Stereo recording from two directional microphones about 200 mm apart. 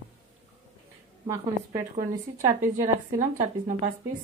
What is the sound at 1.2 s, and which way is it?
Speech, 15° right (ahead or behind).